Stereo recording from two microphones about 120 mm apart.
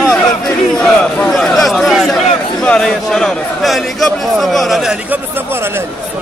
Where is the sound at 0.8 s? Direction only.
5° left (ahead or behind).